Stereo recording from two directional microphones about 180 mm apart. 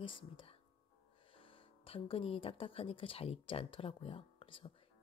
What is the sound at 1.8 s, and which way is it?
Speech, 30° left (ahead or behind).